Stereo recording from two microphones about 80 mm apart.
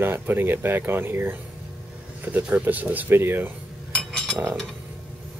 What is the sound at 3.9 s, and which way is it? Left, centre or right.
Cutlery, centre.